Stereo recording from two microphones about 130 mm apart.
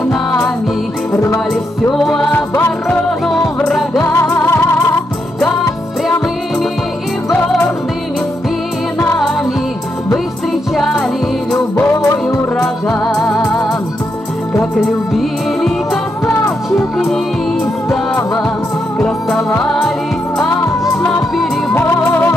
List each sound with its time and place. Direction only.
1.1 s music: 20° left (ahead or behind)
1.5 s music: 5° left (ahead or behind)
4.0 s music: 20° left (ahead or behind)
11.5 s music: 20° left (ahead or behind)
15.1 s music: centre (ahead or behind)
16.3 s music: 20° left (ahead or behind)
17.8 s music: 20° left (ahead or behind)
18.9 s music: 5° left (ahead or behind)
20.4 s music: 20° left (ahead or behind)